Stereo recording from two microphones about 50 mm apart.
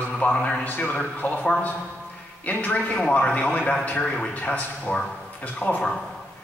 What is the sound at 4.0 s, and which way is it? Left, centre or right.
Speech, centre.